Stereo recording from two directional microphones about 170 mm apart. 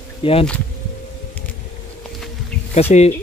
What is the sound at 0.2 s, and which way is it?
Speech, 35° left (ahead or behind).